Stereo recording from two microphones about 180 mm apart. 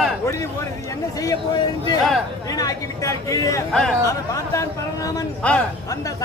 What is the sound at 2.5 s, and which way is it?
Speech, 20° left (ahead or behind).